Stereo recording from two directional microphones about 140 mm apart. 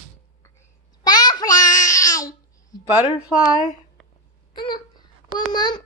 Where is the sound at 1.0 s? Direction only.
30° left (ahead or behind).